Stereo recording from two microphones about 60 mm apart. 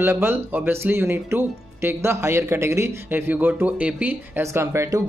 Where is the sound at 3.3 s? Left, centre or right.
Right.